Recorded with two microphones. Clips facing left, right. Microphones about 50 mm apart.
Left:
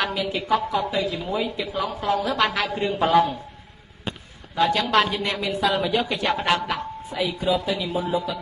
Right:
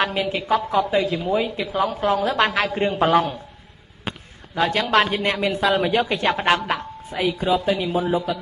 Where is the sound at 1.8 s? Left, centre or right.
Right.